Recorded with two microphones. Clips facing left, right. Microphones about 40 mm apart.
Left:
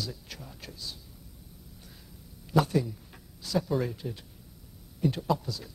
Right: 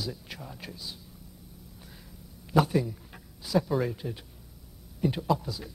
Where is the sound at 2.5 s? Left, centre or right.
Centre.